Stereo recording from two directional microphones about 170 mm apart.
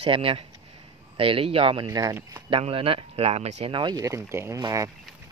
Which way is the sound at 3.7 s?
25° right (ahead or behind).